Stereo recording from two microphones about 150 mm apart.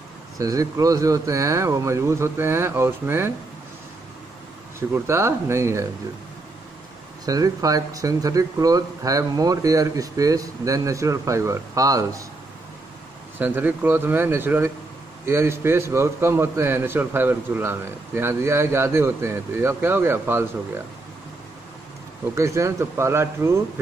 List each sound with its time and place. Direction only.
0.4 s speech: 20° right (ahead or behind)
4.7 s a man's voice: 15° right (ahead or behind)
7.2 s speech: 25° right (ahead or behind)
13.4 s a man's voice: 10° right (ahead or behind)
22.3 s speech: 20° right (ahead or behind)